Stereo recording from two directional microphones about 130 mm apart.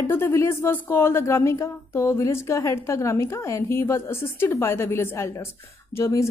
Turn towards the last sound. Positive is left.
turn(degrees=20)  # may be behind; listen again after turning